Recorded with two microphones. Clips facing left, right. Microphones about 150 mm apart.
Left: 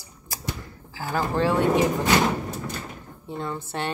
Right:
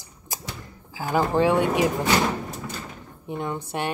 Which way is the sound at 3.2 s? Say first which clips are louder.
Right 2 dB; 15° right (ahead or behind).